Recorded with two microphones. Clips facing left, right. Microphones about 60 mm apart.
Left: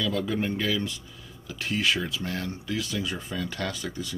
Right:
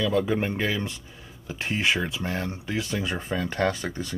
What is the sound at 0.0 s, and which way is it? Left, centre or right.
Speech, right.